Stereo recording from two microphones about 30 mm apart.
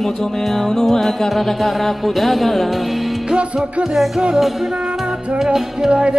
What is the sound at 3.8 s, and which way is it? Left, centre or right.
Music, centre.